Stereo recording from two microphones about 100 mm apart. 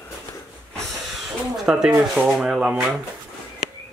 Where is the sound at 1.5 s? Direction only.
5° right (ahead or behind).